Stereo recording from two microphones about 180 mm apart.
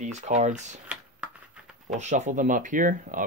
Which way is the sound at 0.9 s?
5° right (ahead or behind).